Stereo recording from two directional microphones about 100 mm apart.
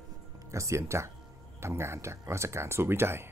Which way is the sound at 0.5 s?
30° right (ahead or behind).